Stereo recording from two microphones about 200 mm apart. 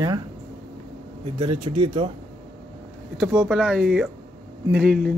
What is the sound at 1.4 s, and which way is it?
Speech, 30° right (ahead or behind).